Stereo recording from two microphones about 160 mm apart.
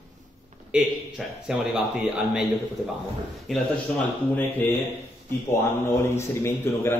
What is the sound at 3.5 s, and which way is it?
Speech, 10° left (ahead or behind).